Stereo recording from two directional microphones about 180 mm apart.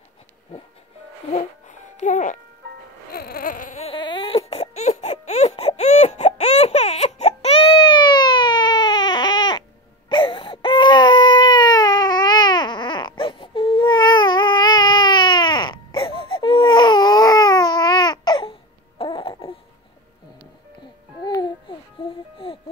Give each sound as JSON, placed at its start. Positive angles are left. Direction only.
{"t": 1.3, "sound": "music", "side_deg": 40}
{"t": 3.1, "sound": "baby cry", "side_deg": 60}
{"t": 21.2, "sound": "music", "side_deg": 25}